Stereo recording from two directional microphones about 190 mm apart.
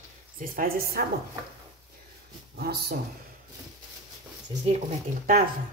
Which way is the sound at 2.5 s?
55° right (ahead or behind).